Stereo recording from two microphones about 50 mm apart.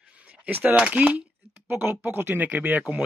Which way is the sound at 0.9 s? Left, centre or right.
Right.